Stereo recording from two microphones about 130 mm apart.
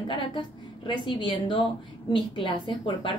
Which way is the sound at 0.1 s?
35° left (ahead or behind).